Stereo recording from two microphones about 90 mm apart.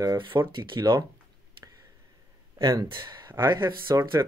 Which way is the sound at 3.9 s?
40° right (ahead or behind).